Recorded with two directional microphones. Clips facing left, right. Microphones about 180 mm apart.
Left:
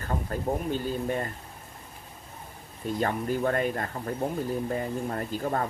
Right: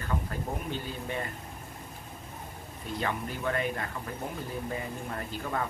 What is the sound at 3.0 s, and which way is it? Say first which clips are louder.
Speech: left 6 dB; 45° left (ahead or behind).